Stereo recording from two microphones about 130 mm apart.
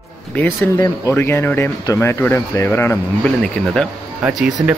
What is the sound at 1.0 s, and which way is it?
Speech, 20° left (ahead or behind).